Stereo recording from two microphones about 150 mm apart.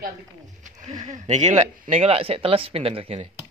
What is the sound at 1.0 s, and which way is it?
Speech, 50° right (ahead or behind).